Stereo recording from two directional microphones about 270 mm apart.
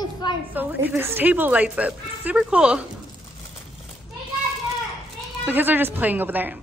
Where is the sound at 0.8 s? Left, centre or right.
Centre.